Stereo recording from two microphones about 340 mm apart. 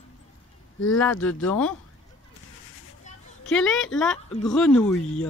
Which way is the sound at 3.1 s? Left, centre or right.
Left.